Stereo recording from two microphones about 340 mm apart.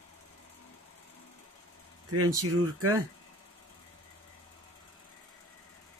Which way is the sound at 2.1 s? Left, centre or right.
Right.